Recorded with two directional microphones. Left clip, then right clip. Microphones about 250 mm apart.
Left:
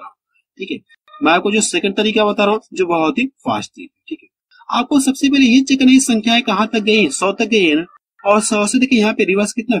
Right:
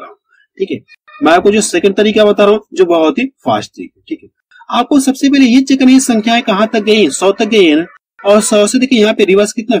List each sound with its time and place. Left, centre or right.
0.6 s speech: centre